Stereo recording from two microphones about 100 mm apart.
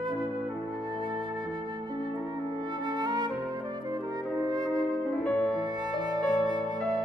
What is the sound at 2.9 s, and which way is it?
Music, 45° right (ahead or behind).